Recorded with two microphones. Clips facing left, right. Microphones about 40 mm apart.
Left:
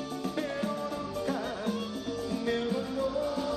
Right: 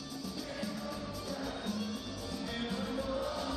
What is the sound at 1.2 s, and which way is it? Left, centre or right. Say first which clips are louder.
Music: left 7 dB; left.